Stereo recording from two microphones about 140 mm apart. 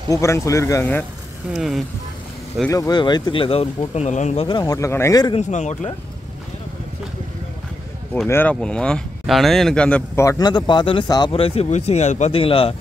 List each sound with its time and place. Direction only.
0.1 s speech: 20° left (ahead or behind)
1.5 s speech: centre (ahead or behind)
2.7 s speech: 25° left (ahead or behind); by 4.5 s 55° left (ahead or behind)
4.5 s speech: 30° left (ahead or behind)
5.4 s speech: 55° left (ahead or behind)
8.3 s speech: 15° left (ahead or behind)
10.2 s speech: 30° left (ahead or behind)
11.3 s speech: 45° left (ahead or behind)